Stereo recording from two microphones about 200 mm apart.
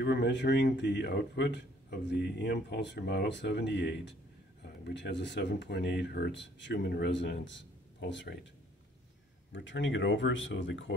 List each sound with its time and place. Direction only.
0.0 s speech: 55° left (ahead or behind)
9.5 s speech: 65° left (ahead or behind)